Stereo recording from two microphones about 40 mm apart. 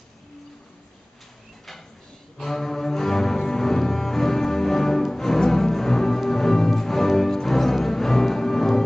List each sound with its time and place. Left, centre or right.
2.3 s cello: centre